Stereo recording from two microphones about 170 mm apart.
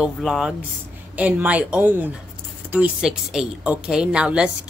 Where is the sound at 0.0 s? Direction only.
Centre (ahead or behind).